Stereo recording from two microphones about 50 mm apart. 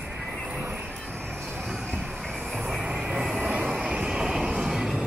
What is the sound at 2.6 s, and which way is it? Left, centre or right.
Vehicle, centre.